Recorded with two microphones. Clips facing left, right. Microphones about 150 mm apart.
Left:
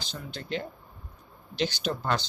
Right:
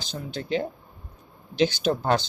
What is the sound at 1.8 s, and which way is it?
Speech, 55° right (ahead or behind).